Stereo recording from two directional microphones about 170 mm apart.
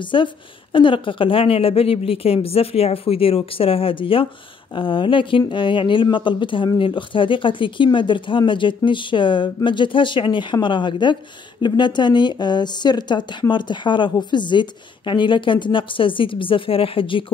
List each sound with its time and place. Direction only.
0.0 s a woman's voice: 30° left (ahead or behind)